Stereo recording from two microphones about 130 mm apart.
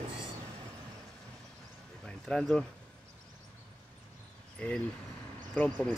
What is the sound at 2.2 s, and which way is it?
Speech, 5° left (ahead or behind).